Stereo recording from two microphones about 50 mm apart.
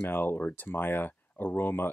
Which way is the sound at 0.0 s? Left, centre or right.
Left.